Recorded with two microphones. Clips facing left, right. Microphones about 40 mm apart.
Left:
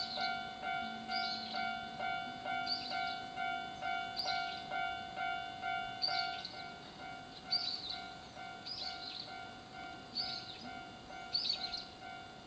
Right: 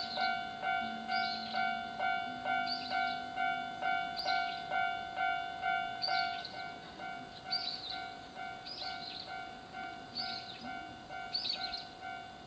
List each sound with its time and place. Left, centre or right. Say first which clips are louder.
0.0 s music: right 4 dB; centre
7.0 s train: right 4 dB; centre
10.2 s music: right 6 dB; centre